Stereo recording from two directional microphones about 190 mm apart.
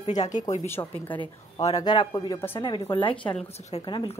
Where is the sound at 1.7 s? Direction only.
25° left (ahead or behind).